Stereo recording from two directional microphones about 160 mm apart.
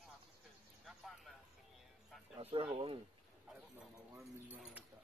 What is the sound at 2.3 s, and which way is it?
Speech, 35° right (ahead or behind).